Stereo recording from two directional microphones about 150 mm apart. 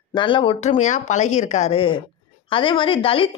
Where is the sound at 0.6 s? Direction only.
50° left (ahead or behind).